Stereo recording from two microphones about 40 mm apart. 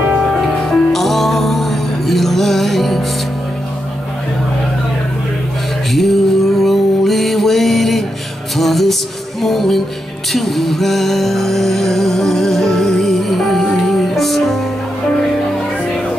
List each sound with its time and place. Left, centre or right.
0.2 s music: centre
5.9 s music: centre